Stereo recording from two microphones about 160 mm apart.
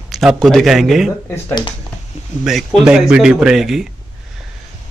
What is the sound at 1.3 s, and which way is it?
Speech, 25° left (ahead or behind).